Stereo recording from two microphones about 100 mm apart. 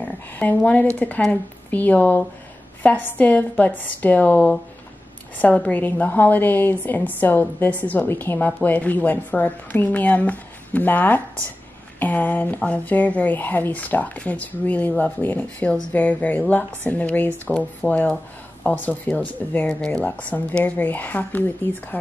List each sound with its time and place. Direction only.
0.0 s a woman's voice: 15° left (ahead or behind)